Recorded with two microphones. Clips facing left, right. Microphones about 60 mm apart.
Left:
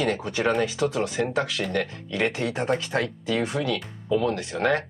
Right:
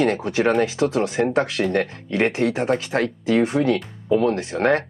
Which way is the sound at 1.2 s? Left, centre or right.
Right.